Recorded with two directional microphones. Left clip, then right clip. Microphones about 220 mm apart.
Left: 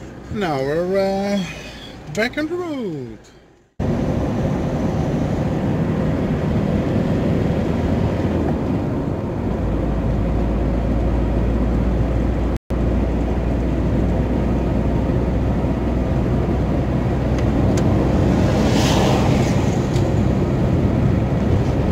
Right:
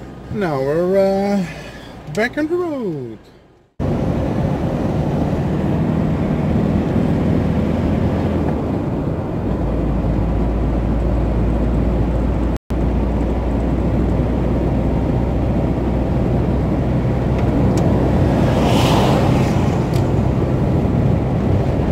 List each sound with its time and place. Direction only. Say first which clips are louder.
0.4 s speech: right 2 dB; 25° right (ahead or behind)